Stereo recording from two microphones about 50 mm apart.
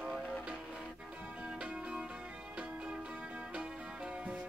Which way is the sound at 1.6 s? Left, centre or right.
Right.